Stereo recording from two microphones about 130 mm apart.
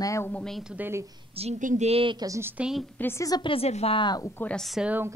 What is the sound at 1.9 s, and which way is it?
Speech, 45° right (ahead or behind).